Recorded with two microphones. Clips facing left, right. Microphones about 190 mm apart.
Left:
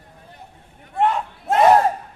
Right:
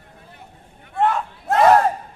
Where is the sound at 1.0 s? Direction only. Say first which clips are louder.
Even; 15° left (ahead or behind).